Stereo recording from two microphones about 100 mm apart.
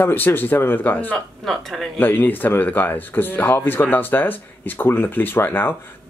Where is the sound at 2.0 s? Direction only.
20° left (ahead or behind).